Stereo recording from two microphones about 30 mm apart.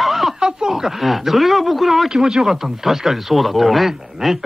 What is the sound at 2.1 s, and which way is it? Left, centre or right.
Speech, centre.